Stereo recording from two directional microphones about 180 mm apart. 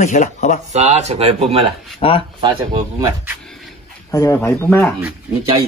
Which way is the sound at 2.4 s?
25° right (ahead or behind).